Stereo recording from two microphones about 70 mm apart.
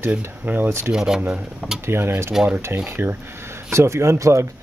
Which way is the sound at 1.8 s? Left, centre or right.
Right.